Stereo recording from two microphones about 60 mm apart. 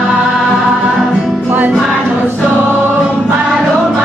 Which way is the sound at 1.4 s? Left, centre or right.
Right.